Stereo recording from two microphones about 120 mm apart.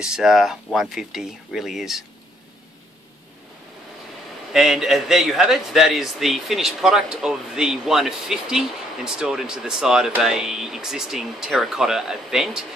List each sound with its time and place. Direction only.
0.0 s a man's voice: 5° right (ahead or behind)
4.5 s a man's voice: 5° right (ahead or behind)